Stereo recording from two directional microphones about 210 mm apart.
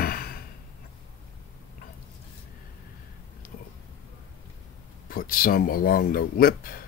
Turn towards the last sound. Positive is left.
turn(degrees=45)  # may be behind; listen again after turning